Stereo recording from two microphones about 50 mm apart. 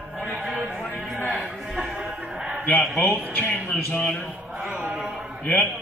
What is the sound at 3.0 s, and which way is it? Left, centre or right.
Speech, left.